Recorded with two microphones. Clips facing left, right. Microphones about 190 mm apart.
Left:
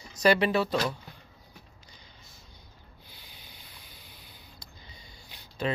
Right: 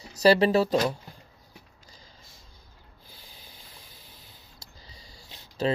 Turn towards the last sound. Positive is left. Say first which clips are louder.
# right 4 dB
turn(degrees=-35)  # may be behind; listen again after turning